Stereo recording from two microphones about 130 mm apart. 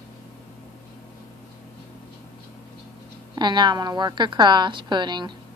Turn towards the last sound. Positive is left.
turn(degrees=-35)  # may be behind; listen again after turning